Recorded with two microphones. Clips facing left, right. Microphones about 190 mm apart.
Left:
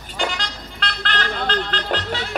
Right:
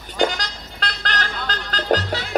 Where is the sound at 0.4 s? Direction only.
40° right (ahead or behind).